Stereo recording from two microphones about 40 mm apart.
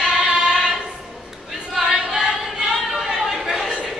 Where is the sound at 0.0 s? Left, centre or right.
Centre.